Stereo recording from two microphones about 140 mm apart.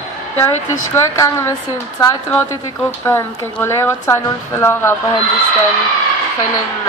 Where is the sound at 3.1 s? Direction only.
15° left (ahead or behind).